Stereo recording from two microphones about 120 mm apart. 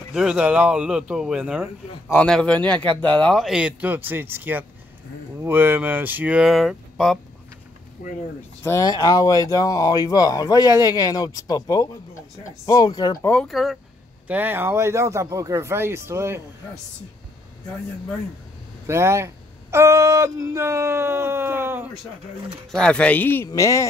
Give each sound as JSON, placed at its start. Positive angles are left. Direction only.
{"t": 0.1, "sound": "speech", "side_deg": -5}
{"t": 2.1, "sound": "speech", "side_deg": 5}
{"t": 3.4, "sound": "speech", "side_deg": -10}
{"t": 8.6, "sound": "speech", "side_deg": 30}
{"t": 13.3, "sound": "speech", "side_deg": 5}
{"t": 14.2, "sound": "speech", "side_deg": -15}
{"t": 18.9, "sound": "speech", "side_deg": -20}
{"t": 22.7, "sound": "speech", "side_deg": 5}